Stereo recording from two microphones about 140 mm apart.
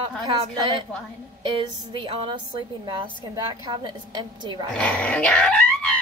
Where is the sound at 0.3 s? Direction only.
35° right (ahead or behind).